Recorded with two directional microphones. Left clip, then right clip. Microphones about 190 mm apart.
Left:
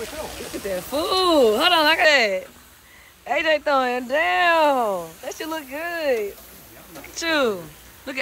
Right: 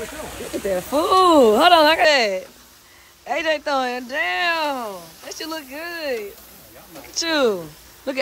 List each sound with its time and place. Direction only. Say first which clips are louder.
0.7 s speech: right 5 dB; 25° right (ahead or behind)
1.6 s speech: right 3 dB; 5° right (ahead or behind); by 8.2 s 25° right (ahead or behind)